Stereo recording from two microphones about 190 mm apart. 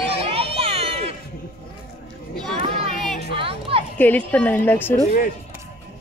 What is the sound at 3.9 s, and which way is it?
A woman's voice, 10° left (ahead or behind).